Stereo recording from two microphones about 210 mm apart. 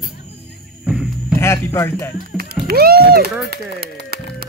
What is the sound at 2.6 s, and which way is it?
Speech, 45° right (ahead or behind).